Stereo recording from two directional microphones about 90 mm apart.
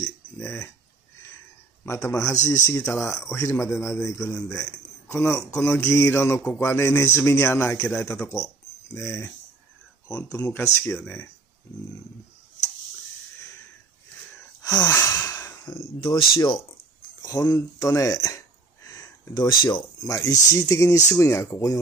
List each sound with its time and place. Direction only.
0.4 s a sound: 30° left (ahead or behind)
1.9 s speech: 30° left (ahead or behind)
14.6 s a sound: 45° left (ahead or behind)
14.9 s sigh: 30° left (ahead or behind)
15.6 s speech: 60° left (ahead or behind)
17.2 s speech: 40° left (ahead or behind)
18.9 s speech: 55° left (ahead or behind)
20.1 s speech: 35° left (ahead or behind)